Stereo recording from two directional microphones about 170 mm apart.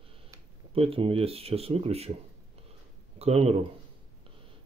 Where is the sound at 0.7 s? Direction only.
35° right (ahead or behind).